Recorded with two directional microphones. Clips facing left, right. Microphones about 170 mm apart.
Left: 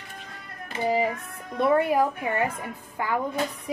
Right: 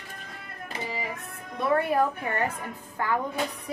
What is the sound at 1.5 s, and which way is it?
Speech, 25° left (ahead or behind).